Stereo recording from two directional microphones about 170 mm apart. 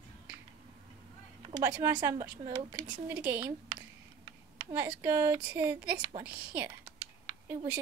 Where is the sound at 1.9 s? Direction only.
10° right (ahead or behind).